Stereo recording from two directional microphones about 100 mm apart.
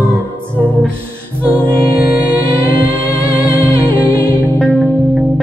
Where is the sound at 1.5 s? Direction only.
15° left (ahead or behind).